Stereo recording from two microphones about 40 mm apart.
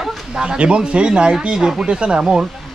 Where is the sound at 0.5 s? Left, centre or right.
Right.